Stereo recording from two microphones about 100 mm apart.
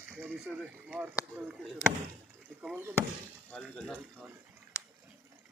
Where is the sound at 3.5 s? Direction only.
5° left (ahead or behind).